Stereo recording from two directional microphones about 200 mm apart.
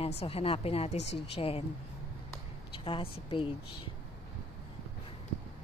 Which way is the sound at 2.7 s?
25° left (ahead or behind).